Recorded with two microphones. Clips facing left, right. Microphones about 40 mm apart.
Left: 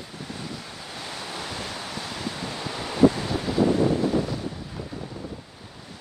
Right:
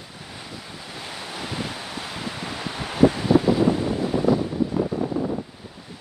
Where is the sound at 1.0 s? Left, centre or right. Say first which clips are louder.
Right 1 dB; centre.